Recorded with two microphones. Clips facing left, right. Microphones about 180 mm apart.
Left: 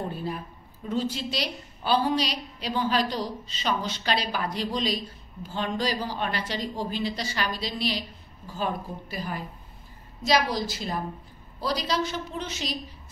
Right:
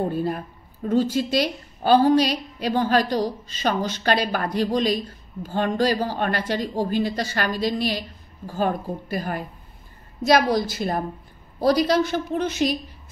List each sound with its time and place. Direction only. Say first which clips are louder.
0.1 s a woman's voice: right 7 dB; 45° right (ahead or behind)